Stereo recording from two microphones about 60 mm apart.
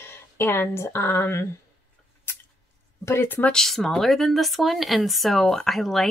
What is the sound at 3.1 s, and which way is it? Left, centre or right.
Speech, left.